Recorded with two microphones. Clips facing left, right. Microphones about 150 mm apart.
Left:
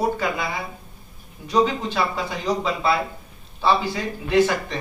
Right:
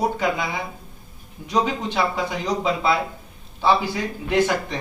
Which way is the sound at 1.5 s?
15° right (ahead or behind).